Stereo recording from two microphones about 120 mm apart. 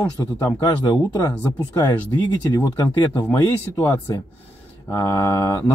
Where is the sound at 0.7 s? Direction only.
30° left (ahead or behind).